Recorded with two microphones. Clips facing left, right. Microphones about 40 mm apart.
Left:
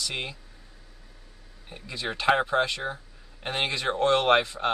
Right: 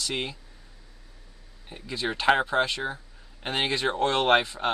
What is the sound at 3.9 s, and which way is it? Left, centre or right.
Speech, centre.